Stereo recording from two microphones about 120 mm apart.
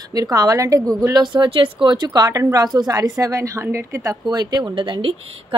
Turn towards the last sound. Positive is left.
turn(degrees=-45)  # may be behind; listen again after turning